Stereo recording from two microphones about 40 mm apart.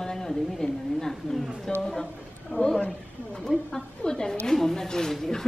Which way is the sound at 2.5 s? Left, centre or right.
Left.